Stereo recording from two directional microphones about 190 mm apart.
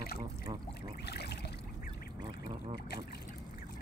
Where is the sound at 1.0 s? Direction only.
60° left (ahead or behind).